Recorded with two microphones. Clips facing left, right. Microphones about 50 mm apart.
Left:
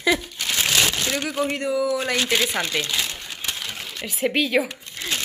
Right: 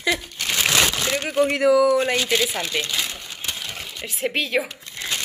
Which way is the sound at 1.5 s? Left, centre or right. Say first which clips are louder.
Right 10 dB; right.